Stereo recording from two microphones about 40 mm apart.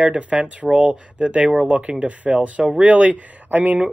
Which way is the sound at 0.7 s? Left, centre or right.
Right.